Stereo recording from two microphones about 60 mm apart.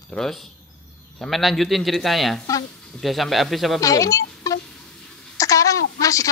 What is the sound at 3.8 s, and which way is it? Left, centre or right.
Speech, left.